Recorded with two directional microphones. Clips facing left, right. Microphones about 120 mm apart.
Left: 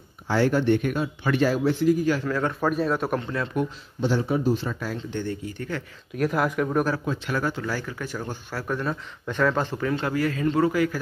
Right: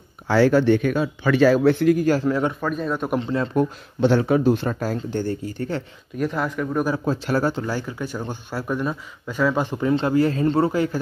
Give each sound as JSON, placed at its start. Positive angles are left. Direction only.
{"t": 0.3, "sound": "speech", "side_deg": -90}
{"t": 2.2, "sound": "speech", "side_deg": -20}
{"t": 2.6, "sound": "speech", "side_deg": 5}
{"t": 3.2, "sound": "speech", "side_deg": -25}
{"t": 4.0, "sound": "speech", "side_deg": -70}
{"t": 4.7, "sound": "speech", "side_deg": -40}
{"t": 6.1, "sound": "speech", "side_deg": 5}
{"t": 7.1, "sound": "speech", "side_deg": -35}